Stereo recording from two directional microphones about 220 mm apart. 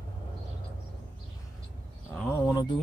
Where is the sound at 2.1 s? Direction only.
10° left (ahead or behind).